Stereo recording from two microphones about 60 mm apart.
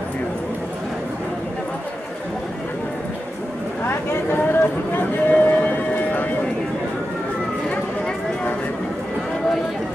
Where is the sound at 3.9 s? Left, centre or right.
Left.